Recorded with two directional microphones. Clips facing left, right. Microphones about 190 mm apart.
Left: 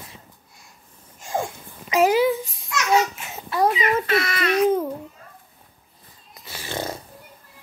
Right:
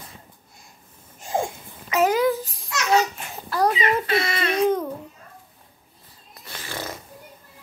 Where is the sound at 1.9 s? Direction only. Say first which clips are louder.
Left 2 dB; 10° left (ahead or behind).